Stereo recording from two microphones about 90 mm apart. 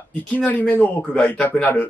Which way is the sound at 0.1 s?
15° left (ahead or behind).